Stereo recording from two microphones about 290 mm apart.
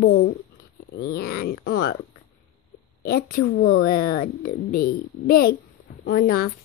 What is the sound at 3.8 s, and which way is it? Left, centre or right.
Speech, left.